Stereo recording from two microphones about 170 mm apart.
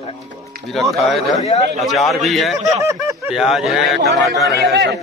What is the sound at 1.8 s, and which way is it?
Speech, centre (ahead or behind).